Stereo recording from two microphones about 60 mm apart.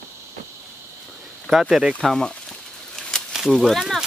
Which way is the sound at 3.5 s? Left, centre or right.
Centre.